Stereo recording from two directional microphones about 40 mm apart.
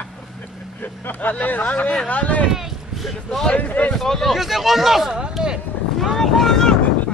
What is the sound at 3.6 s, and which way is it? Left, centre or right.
Speech, left.